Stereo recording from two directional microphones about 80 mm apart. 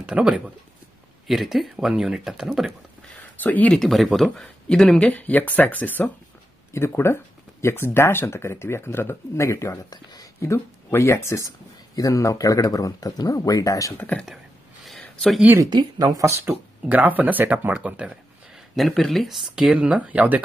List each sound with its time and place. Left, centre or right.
0.0 s speech: centre
1.2 s speech: centre
3.3 s speech: left
3.7 s speech: centre
5.1 s speech: left
6.7 s speech: left
13.9 s speech: centre
14.9 s a sound: centre
15.7 s speech: right
16.3 s speech: right
18.8 s speech: centre